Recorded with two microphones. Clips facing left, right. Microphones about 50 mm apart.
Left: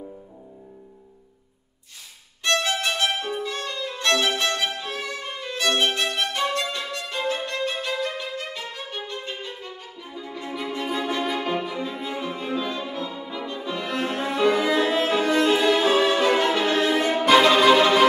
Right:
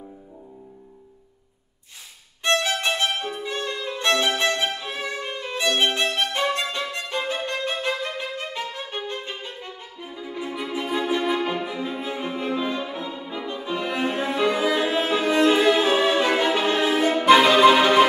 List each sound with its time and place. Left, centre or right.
2.4 s violin: right
3.4 s music: right
4.2 s violin: right
10.0 s music: centre
12.0 s cello: right
12.3 s music: centre
13.7 s cello: centre
14.9 s music: centre
15.3 s violin: centre
16.9 s violin: centre
17.3 s music: centre